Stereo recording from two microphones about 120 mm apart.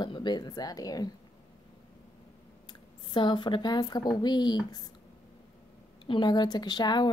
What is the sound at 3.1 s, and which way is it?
A woman's voice, 40° left (ahead or behind).